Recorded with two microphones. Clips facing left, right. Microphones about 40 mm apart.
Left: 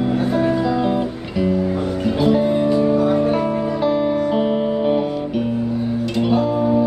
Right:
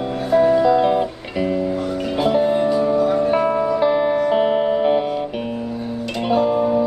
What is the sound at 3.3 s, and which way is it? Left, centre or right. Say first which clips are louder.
Music: right 2 dB; right.